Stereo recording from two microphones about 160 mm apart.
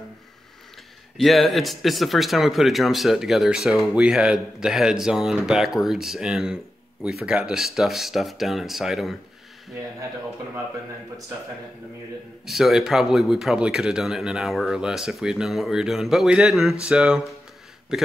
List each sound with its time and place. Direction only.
1.1 s speech: centre (ahead or behind)
12.4 s speech: centre (ahead or behind)